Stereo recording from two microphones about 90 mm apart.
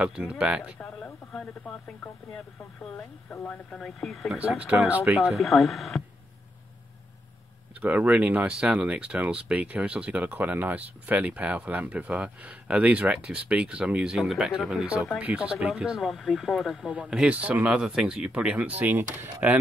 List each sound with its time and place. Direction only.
0.0 s speech: 10° right (ahead or behind)
0.7 s speech: 15° left (ahead or behind)
4.6 s speech: 15° right (ahead or behind)
5.1 s speech: 5° right (ahead or behind)
7.8 s speech: 20° right (ahead or behind)